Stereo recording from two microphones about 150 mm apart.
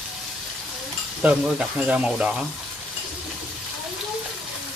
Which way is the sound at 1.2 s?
5° right (ahead or behind).